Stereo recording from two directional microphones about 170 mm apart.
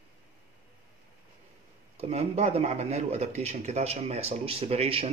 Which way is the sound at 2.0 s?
40° right (ahead or behind).